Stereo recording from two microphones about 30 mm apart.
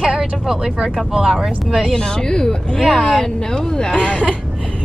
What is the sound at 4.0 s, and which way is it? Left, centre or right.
Speech, left.